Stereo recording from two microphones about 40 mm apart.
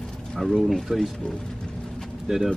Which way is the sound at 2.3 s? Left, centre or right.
Centre.